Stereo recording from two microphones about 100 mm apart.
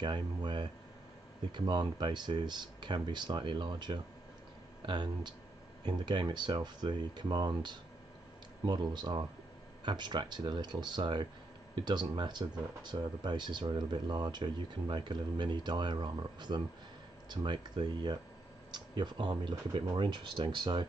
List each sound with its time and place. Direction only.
0.0 s speech: 50° right (ahead or behind)